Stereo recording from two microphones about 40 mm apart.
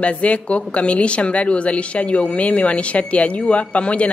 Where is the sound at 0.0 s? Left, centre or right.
Left.